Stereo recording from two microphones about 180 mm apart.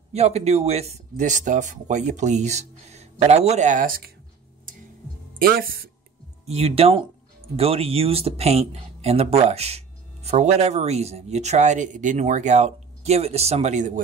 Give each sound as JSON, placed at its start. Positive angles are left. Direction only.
{"t": 0.1, "sound": "speech", "side_deg": -35}
{"t": 5.4, "sound": "speech", "side_deg": -55}
{"t": 6.4, "sound": "speech", "side_deg": -35}